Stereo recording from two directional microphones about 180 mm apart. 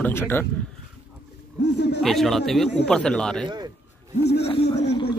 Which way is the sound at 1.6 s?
70° left (ahead or behind).